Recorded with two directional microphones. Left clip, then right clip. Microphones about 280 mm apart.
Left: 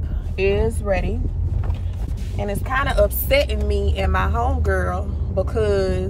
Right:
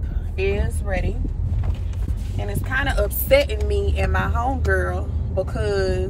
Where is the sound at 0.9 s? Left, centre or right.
Left.